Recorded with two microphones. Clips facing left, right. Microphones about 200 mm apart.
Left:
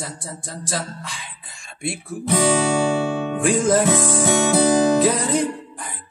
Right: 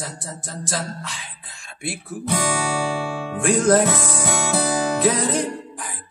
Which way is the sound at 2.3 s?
20° left (ahead or behind).